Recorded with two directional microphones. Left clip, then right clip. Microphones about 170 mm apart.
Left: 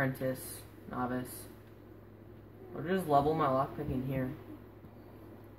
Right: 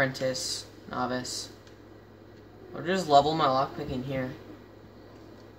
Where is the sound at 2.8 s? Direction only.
50° right (ahead or behind).